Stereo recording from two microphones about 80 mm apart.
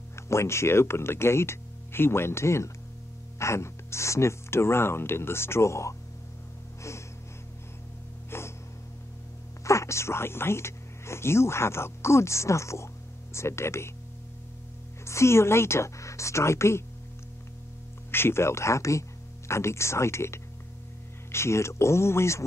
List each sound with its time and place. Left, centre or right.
0.1 s speech: left
6.8 s gasp: left
8.3 s gasp: left
9.7 s speech: left
15.0 s speech: left
18.1 s speech: left